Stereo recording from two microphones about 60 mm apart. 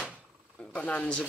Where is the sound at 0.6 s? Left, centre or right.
Left.